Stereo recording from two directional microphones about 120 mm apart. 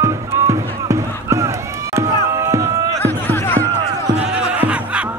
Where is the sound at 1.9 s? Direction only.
25° right (ahead or behind).